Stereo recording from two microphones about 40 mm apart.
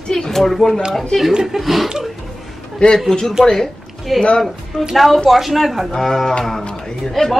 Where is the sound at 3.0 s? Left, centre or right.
Centre.